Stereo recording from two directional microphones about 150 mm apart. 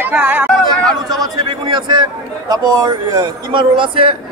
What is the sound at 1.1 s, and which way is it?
A man's voice, 30° right (ahead or behind).